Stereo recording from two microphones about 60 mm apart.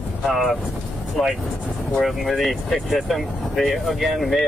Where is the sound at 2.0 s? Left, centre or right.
Centre.